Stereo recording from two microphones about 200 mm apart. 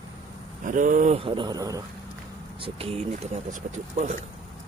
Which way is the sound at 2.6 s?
30° right (ahead or behind).